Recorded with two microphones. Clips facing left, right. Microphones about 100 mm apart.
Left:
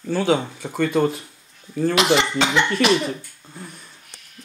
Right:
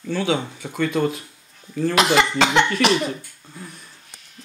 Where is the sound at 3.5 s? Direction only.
30° left (ahead or behind).